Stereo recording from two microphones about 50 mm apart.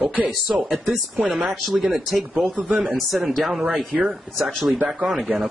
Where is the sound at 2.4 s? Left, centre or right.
Right.